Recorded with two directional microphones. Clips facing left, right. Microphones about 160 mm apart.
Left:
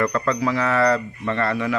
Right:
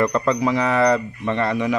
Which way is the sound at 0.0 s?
20° right (ahead or behind).